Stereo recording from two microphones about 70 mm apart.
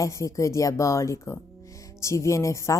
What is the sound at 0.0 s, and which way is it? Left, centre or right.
A woman's voice, left.